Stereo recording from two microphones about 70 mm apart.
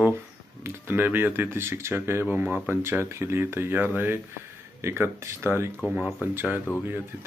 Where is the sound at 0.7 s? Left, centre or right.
Right.